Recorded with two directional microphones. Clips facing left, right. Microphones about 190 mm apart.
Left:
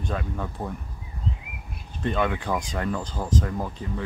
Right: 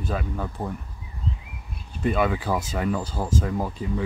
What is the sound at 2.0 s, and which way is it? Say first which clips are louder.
Speech: right 2 dB; 5° right (ahead or behind).